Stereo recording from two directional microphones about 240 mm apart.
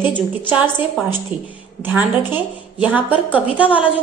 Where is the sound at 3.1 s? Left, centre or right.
Left.